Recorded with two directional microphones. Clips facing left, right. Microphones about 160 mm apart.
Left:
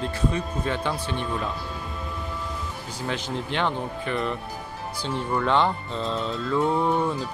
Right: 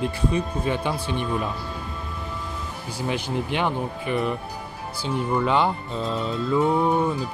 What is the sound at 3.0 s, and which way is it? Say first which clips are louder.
Music: right 3 dB; 10° right (ahead or behind).